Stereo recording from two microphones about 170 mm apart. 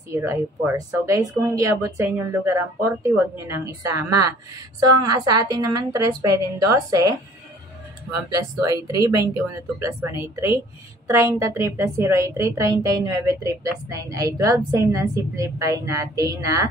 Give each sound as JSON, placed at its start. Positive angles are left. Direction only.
{"t": 0.1, "sound": "a woman's voice", "side_deg": -15}
{"t": 8.3, "sound": "a woman's voice", "side_deg": -20}